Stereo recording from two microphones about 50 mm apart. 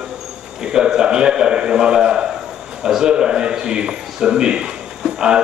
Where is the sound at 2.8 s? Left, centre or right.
Centre.